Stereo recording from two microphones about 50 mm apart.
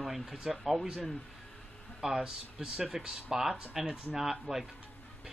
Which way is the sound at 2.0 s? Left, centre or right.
Centre.